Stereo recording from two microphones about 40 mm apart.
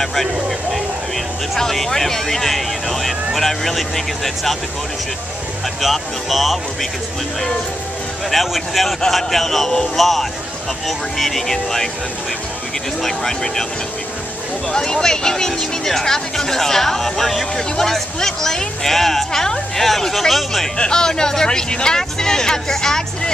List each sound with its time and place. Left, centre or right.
0.0 s vehicle: centre
1.6 s vehicle: centre
3.3 s speech: centre
5.8 s speech: centre
8.3 s speech: centre
13.0 s speech: centre
14.7 s speech: centre
20.7 s speech: centre